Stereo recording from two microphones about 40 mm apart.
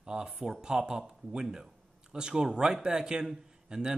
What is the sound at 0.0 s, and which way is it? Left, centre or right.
Speech, right.